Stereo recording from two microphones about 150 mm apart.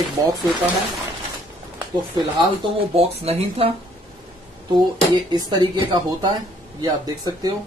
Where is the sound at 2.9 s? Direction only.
40° right (ahead or behind).